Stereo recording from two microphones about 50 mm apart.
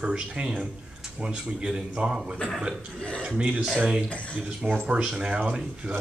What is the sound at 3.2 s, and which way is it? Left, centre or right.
Speech, right.